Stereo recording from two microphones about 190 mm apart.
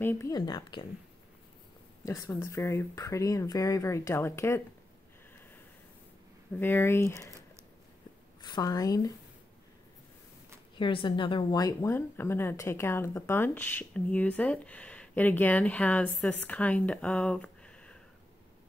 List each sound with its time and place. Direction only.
0.0 s a woman's voice: 15° left (ahead or behind)
2.0 s speech: 15° left (ahead or behind)
6.5 s speech: 10° left (ahead or behind)
8.4 s a woman's voice: 20° left (ahead or behind)
10.8 s speech: 25° left (ahead or behind); by 17.9 s 5° left (ahead or behind)